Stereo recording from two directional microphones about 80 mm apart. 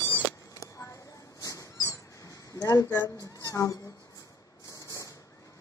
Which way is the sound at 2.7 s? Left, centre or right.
Left.